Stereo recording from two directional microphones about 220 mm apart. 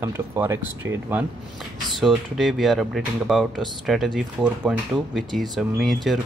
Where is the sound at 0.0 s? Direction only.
10° right (ahead or behind).